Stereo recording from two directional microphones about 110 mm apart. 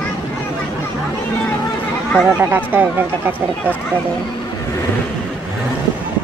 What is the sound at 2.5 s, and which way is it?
Speech, 15° right (ahead or behind).